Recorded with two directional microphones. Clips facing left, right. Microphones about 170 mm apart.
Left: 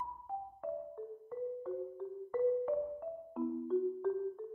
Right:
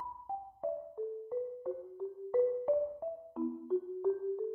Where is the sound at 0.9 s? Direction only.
15° right (ahead or behind).